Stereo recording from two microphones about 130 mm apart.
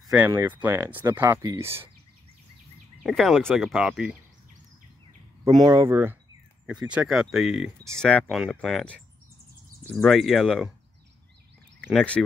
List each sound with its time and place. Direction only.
0.0 s a sound: 10° right (ahead or behind)
0.3 s speech: 15° right (ahead or behind)
3.0 s speech: centre (ahead or behind)
5.5 s speech: 30° right (ahead or behind)
6.6 s speech: 5° right (ahead or behind)
7.9 s speech: 5° left (ahead or behind)
11.8 s speech: 10° left (ahead or behind)